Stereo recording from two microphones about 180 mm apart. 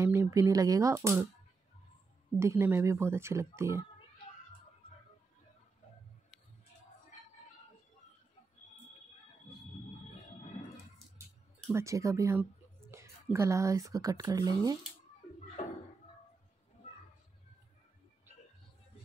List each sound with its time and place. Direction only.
0.0 s speech: 15° right (ahead or behind)
2.3 s speech: 15° right (ahead or behind)
11.7 s speech: 15° right (ahead or behind)